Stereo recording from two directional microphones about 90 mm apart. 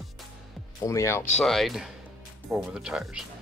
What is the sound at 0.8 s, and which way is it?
Speech, 35° left (ahead or behind).